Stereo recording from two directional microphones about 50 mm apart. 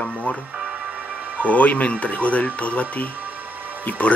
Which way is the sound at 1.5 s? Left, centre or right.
Left.